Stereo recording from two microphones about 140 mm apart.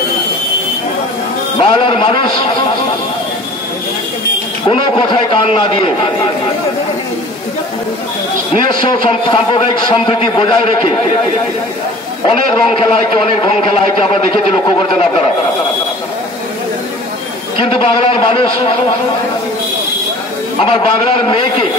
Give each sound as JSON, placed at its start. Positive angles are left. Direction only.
{"t": 1.6, "sound": "a man's voice", "side_deg": 40}
{"t": 4.6, "sound": "a man's voice", "side_deg": 40}
{"t": 8.8, "sound": "a man's voice", "side_deg": 40}
{"t": 12.3, "sound": "a man's voice", "side_deg": 40}
{"t": 17.6, "sound": "a man's voice", "side_deg": 40}
{"t": 20.6, "sound": "a man's voice", "side_deg": 40}